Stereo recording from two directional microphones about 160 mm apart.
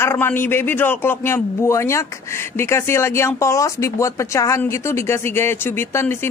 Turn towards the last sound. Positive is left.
turn(degrees=15)  # may be behind; listen again after turning